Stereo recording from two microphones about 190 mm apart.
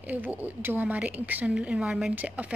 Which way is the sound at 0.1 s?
10° right (ahead or behind).